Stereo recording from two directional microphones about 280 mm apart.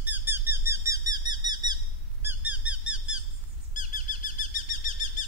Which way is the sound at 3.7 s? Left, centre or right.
Left.